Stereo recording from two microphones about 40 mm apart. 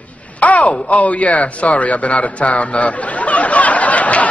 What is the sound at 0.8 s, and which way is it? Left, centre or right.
A man's voice, left.